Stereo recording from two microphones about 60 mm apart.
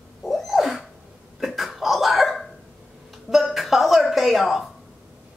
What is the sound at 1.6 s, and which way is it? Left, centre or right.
Cough, centre.